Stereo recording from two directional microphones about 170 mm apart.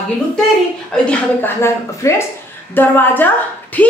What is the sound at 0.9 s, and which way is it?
A man's voice, 15° left (ahead or behind).